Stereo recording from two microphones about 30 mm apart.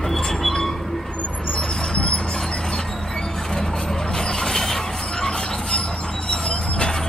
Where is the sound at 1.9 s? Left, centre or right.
Left.